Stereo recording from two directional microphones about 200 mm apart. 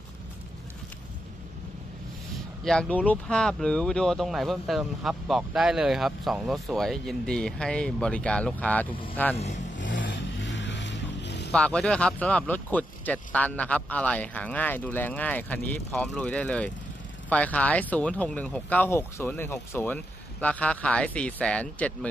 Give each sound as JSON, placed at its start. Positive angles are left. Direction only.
{"t": 2.6, "sound": "speech", "side_deg": 5}
{"t": 9.8, "sound": "vehicle", "side_deg": 65}
{"t": 11.5, "sound": "speech", "side_deg": 5}